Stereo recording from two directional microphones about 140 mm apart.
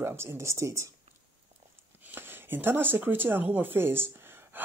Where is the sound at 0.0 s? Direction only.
20° right (ahead or behind).